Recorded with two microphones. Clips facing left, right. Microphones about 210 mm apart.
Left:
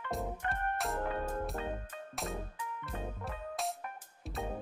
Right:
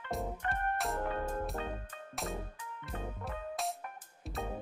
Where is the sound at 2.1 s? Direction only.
Centre (ahead or behind).